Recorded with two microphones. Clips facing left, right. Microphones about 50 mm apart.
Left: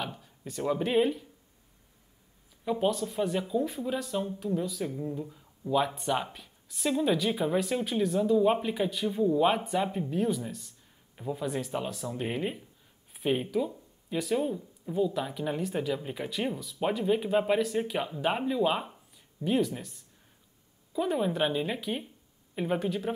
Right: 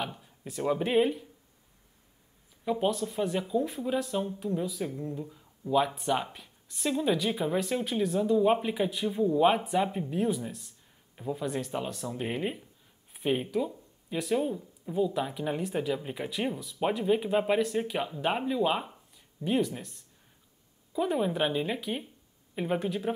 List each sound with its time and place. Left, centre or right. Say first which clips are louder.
0.0 s speech: right 1 dB; centre
2.6 s speech: even; centre